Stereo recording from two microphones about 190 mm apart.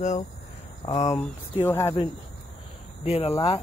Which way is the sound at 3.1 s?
35° left (ahead or behind).